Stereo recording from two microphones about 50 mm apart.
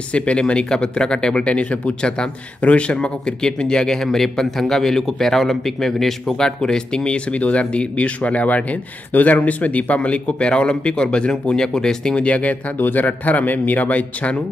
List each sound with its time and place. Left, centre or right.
0.1 s speech: left
12.3 s speech: left
12.7 s speech: left